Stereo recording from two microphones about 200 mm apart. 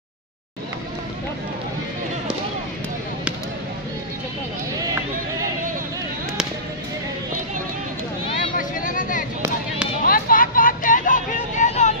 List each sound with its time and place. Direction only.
8.5 s vehicle: 45° left (ahead or behind)